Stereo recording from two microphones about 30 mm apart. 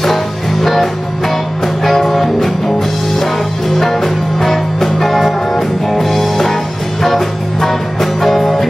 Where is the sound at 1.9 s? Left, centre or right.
Centre.